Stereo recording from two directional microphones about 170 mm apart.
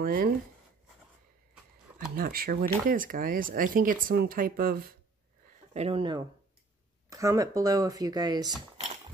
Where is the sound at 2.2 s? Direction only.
60° right (ahead or behind).